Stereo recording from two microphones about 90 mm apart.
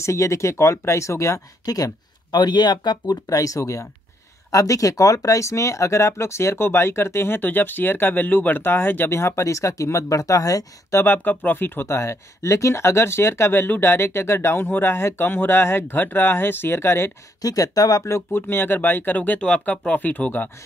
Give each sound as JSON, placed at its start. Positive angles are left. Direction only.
{"t": 0.0, "sound": "speech", "side_deg": 35}
{"t": 2.3, "sound": "speech", "side_deg": 55}
{"t": 11.1, "sound": "speech", "side_deg": 20}
{"t": 17.4, "sound": "speech", "side_deg": 45}